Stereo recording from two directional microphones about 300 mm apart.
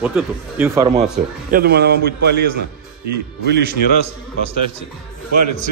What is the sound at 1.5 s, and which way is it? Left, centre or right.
Speech, right.